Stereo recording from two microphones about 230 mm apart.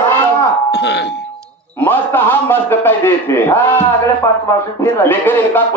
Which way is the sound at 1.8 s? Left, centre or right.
Centre.